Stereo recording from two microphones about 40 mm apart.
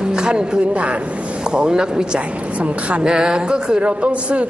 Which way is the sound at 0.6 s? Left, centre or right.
Right.